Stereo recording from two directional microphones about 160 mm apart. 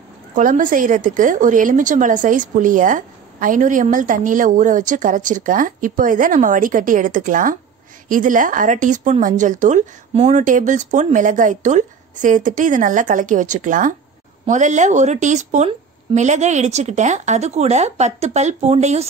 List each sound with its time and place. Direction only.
0.3 s a woman's voice: 55° right (ahead or behind)